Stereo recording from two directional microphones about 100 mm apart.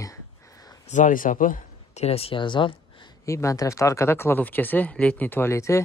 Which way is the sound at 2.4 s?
55° left (ahead or behind).